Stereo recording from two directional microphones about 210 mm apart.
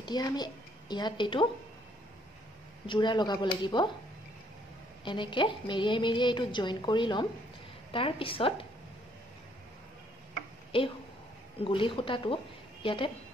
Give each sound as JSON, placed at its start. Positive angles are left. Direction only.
{"t": 0.0, "sound": "a woman's voice", "side_deg": 20}
{"t": 2.9, "sound": "a woman's voice", "side_deg": 20}
{"t": 5.0, "sound": "a woman's voice", "side_deg": 25}
{"t": 10.7, "sound": "a woman's voice", "side_deg": 25}